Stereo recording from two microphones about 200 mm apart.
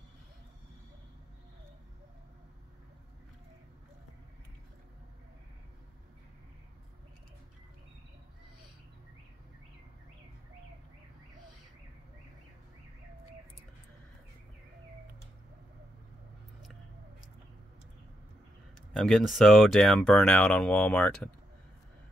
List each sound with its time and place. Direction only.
18.9 s speech: centre (ahead or behind)